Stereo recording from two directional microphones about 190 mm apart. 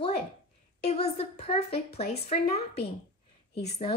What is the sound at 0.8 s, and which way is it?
A woman's voice, 35° left (ahead or behind).